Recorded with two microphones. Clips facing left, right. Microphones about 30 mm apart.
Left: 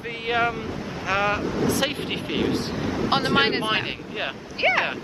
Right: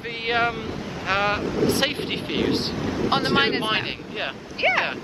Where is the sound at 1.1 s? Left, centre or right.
Right.